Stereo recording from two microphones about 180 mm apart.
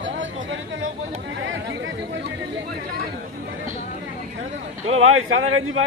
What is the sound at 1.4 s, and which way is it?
Chatter, 90° right.